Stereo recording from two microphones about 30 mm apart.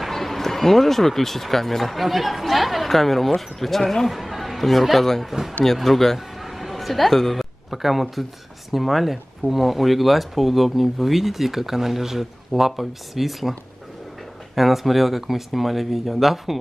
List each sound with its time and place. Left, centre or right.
0.1 s speech: centre
4.1 s speech: centre
6.1 s a sound: centre
7.7 s speech: centre